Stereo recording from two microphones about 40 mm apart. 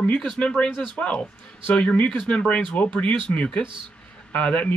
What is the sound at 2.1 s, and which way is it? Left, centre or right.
Speech, left.